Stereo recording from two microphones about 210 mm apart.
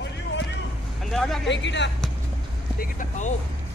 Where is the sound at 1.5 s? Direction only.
60° left (ahead or behind).